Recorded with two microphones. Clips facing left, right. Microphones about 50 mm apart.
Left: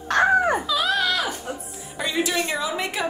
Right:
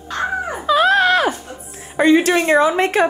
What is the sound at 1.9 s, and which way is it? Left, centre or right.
A woman's voice, right.